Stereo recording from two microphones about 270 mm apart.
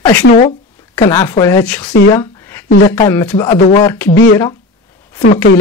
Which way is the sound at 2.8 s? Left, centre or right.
Centre.